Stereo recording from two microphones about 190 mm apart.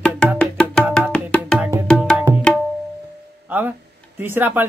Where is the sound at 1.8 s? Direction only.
5° left (ahead or behind).